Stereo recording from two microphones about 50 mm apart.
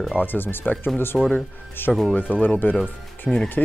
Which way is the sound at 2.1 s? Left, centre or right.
Left.